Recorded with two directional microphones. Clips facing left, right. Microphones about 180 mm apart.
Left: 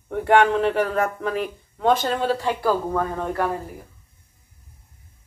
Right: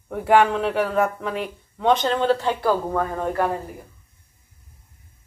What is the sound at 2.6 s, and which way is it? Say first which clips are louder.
Speech: even; 10° right (ahead or behind).